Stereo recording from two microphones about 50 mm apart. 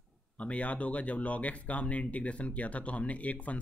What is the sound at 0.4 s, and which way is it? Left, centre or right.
Speech, left.